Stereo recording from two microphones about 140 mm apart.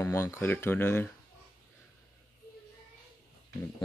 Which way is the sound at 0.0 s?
20° left (ahead or behind).